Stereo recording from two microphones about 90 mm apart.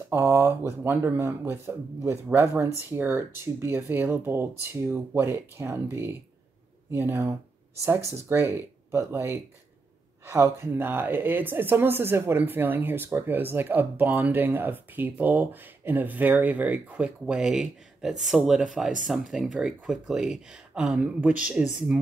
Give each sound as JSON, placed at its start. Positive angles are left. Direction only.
{"t": 0.1, "sound": "speech", "side_deg": -30}